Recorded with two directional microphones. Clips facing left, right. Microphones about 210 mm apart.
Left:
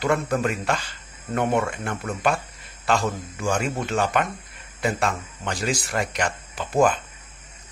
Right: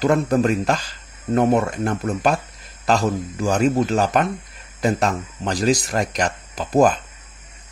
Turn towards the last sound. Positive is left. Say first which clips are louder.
# right 4 dB
turn(degrees=-40)  # may be behind; listen again after turning